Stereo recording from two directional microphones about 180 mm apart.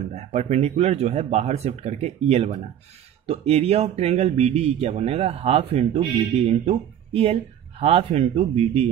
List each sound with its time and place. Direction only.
0.1 s speech: 35° right (ahead or behind)